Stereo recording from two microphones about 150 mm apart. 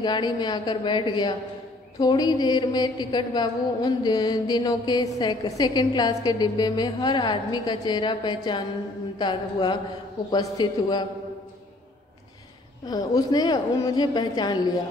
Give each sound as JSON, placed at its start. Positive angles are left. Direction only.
{"t": 0.0, "sound": "a woman's voice", "side_deg": 30}
{"t": 12.8, "sound": "a woman's voice", "side_deg": 25}